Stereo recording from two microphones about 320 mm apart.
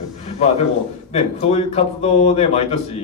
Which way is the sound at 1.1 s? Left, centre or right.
Centre.